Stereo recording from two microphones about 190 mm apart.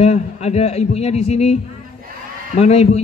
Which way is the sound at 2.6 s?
35° left (ahead or behind).